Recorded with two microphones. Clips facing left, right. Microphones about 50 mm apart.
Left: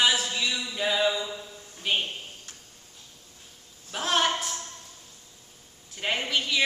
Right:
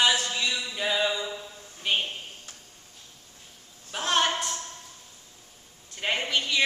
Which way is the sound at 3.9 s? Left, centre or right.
Centre.